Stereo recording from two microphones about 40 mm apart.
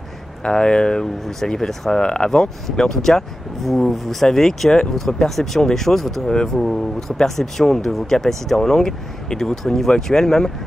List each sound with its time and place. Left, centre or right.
0.4 s speech: left
1.4 s speech: centre